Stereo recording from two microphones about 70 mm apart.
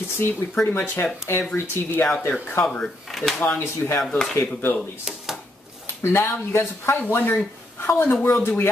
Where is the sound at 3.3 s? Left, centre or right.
Left.